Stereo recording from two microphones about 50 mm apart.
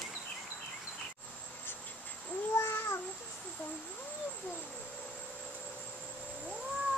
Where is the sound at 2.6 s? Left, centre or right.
Left.